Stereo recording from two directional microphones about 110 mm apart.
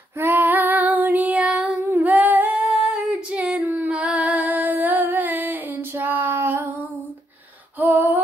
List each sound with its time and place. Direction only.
0.2 s female singing: 20° right (ahead or behind)
2.0 s humming: 15° right (ahead or behind)
2.7 s female singing: 5° right (ahead or behind)
7.8 s a sound: 15° right (ahead or behind)